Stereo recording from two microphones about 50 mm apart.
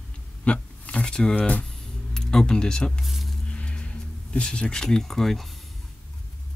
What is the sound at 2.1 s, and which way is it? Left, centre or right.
Speech, centre.